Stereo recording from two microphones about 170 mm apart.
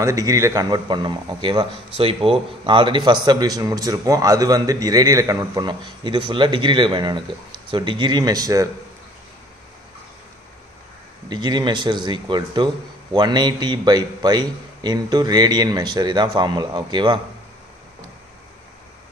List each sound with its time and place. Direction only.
0.0 s a man's voice: 20° right (ahead or behind)
11.2 s a man's voice: 25° right (ahead or behind)